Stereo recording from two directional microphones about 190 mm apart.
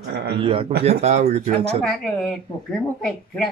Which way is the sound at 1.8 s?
5° left (ahead or behind).